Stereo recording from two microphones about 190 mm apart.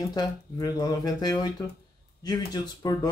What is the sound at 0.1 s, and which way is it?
Speech, 20° left (ahead or behind).